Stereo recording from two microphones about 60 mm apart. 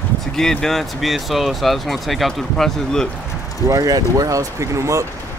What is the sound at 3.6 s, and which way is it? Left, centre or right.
Speech, right.